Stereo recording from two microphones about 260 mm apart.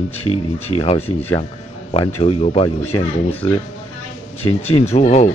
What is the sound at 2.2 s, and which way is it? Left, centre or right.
Speech, left.